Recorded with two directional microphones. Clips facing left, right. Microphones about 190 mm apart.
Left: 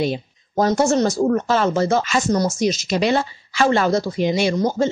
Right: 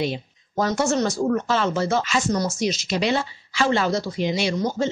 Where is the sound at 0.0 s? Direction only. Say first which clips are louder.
Left 4 dB; 40° left (ahead or behind).